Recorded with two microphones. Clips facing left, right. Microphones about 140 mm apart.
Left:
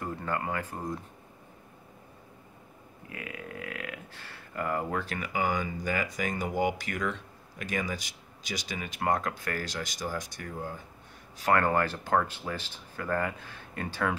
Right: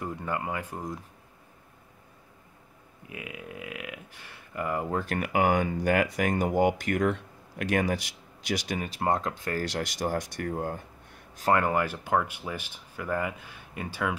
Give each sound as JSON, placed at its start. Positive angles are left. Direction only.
{"t": 0.0, "sound": "speech", "side_deg": -15}
{"t": 3.1, "sound": "speech", "side_deg": -15}
{"t": 4.9, "sound": "speech", "side_deg": -50}
{"t": 8.8, "sound": "speech", "side_deg": -30}
{"t": 9.7, "sound": "speech", "side_deg": -60}
{"t": 11.5, "sound": "speech", "side_deg": -10}